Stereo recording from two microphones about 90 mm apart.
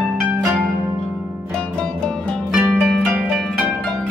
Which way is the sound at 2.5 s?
Centre (ahead or behind).